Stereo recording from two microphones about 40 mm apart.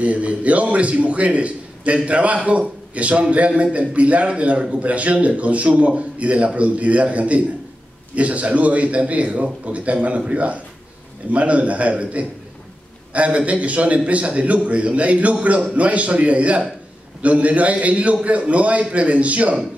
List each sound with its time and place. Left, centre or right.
0.0 s a man's voice: right